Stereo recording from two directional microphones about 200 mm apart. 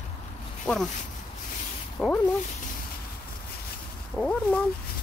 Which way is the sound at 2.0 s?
5° left (ahead or behind).